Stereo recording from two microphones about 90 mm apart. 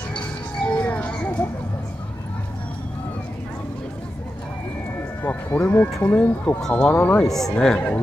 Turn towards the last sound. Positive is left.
turn(degrees=10)  # may be behind; listen again after turning